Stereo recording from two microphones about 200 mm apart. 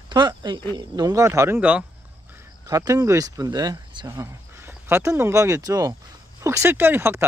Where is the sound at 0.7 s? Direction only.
20° right (ahead or behind).